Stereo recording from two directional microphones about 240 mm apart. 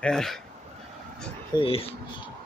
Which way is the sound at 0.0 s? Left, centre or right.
Centre.